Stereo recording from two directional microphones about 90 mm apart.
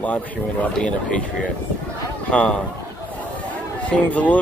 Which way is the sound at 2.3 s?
10° left (ahead or behind).